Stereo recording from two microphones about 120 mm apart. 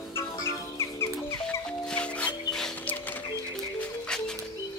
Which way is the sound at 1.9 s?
10° left (ahead or behind).